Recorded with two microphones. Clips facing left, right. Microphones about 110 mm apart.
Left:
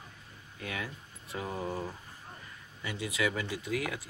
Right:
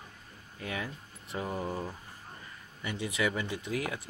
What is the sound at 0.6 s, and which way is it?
Speech, 30° right (ahead or behind).